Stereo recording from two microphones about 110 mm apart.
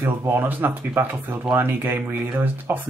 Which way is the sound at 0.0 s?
25° right (ahead or behind).